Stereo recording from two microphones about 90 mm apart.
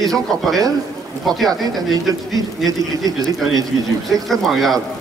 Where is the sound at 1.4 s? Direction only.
45° right (ahead or behind).